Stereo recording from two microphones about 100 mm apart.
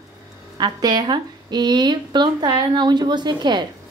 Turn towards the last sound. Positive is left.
turn(degrees=-50)  # may be behind; listen again after turning